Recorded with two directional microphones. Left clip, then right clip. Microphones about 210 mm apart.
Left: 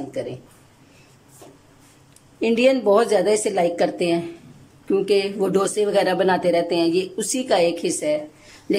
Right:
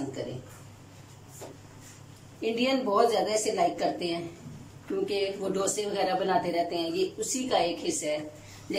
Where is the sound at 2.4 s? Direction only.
50° left (ahead or behind).